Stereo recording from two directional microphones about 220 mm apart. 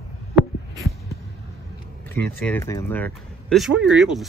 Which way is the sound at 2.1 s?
10° left (ahead or behind).